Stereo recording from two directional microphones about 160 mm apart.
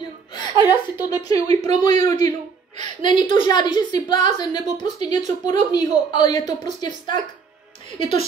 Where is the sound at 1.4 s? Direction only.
40° right (ahead or behind).